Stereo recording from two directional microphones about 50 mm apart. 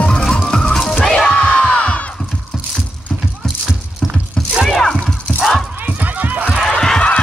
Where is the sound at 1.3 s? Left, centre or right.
Centre.